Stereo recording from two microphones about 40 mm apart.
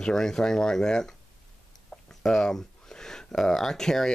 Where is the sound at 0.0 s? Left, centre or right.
Centre.